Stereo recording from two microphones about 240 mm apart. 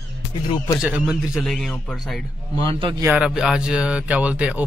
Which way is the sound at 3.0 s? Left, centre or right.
Centre.